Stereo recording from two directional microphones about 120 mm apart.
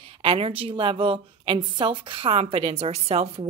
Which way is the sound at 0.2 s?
45° right (ahead or behind).